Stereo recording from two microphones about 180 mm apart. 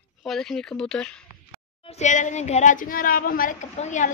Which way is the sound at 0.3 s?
5° left (ahead or behind).